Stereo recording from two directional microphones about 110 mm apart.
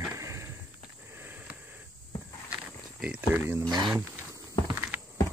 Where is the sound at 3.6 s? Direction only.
40° right (ahead or behind).